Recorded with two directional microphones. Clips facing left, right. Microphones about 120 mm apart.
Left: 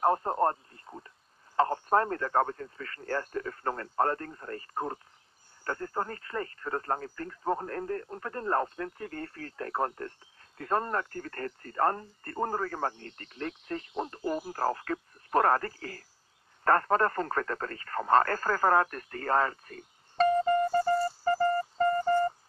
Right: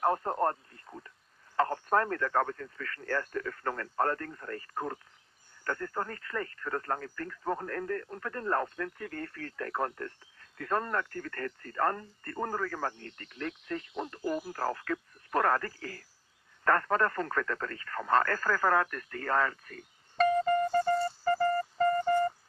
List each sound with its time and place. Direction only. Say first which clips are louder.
0.0 s speech: left 2 dB; 25° left (ahead or behind)
21.0 s music: left 1 dB; 30° left (ahead or behind)